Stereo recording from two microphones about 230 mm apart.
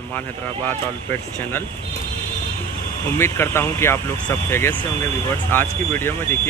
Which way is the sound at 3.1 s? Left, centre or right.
Centre.